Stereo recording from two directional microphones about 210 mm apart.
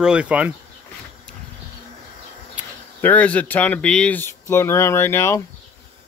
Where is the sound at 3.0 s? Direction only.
5° left (ahead or behind).